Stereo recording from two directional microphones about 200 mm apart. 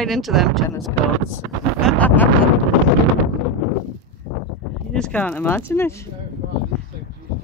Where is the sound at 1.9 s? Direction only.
10° left (ahead or behind).